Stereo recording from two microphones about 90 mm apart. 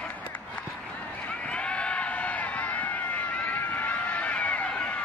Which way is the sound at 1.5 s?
10° left (ahead or behind).